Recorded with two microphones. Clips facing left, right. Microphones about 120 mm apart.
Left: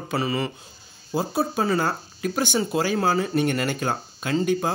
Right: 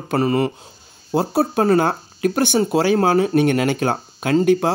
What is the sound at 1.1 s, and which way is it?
Speech, 60° right (ahead or behind).